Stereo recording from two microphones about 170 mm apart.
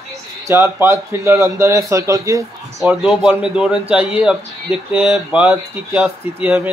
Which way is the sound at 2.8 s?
Centre (ahead or behind).